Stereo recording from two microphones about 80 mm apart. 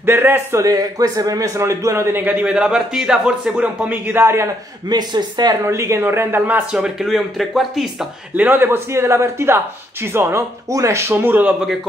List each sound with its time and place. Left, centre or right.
0.0 s a man's voice: right
0.6 s a man's voice: right
2.2 s a man's voice: centre
4.1 s a man's voice: right
4.8 s speech: right
5.7 s a man's voice: right
6.8 s speech: centre
8.4 s a man's voice: right